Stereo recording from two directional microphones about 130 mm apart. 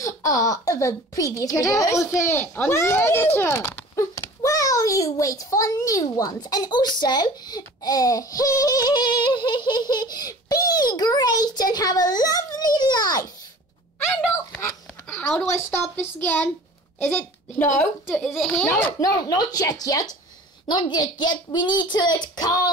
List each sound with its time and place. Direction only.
0.0 s a child's voice: 25° left (ahead or behind)
13.9 s speech: 10° left (ahead or behind)
15.7 s speech: 15° left (ahead or behind)
18.0 s a child's voice: centre (ahead or behind)
18.9 s a child's voice: 30° left (ahead or behind)